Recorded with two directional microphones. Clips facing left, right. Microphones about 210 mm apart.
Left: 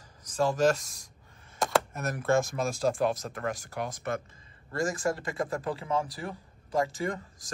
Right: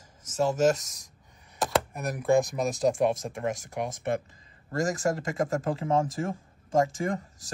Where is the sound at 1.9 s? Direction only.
15° right (ahead or behind).